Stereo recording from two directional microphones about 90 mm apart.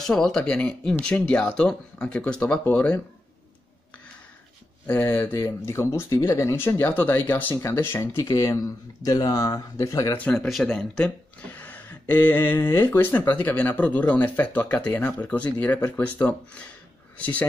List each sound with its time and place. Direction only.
0.0 s speech: 5° left (ahead or behind)
5.1 s speech: 25° left (ahead or behind); by 10.1 s 40° left (ahead or behind)
10.3 s speech: 5° left (ahead or behind)